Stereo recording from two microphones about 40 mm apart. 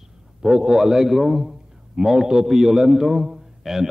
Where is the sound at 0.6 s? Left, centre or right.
Centre.